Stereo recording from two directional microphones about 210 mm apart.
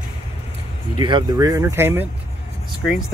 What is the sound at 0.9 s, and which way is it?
Speech, 20° right (ahead or behind).